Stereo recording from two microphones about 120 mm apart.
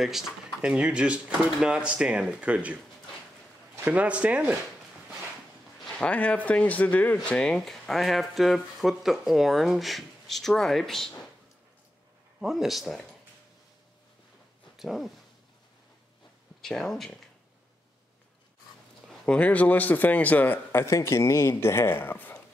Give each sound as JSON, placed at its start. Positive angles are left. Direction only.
{"t": 0.0, "sound": "speech", "side_deg": -5}
{"t": 5.9, "sound": "a man's voice", "side_deg": 10}
{"t": 12.4, "sound": "speech", "side_deg": -5}
{"t": 14.8, "sound": "speech", "side_deg": 0}
{"t": 16.6, "sound": "speech", "side_deg": 5}
{"t": 19.0, "sound": "a man's voice", "side_deg": 10}